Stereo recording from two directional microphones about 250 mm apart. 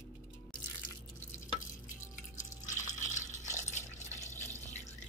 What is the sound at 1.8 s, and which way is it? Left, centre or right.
Drip, left.